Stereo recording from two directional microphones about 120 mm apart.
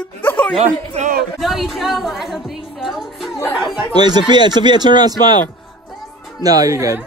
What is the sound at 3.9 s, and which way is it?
Speech, 35° right (ahead or behind).